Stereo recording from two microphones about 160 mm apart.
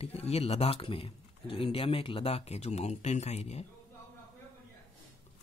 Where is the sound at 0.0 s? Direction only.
40° left (ahead or behind).